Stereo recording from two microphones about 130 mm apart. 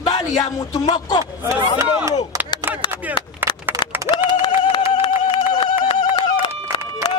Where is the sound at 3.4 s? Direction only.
15° right (ahead or behind).